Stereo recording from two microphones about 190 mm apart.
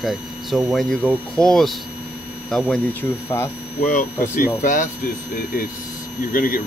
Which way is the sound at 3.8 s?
45° left (ahead or behind).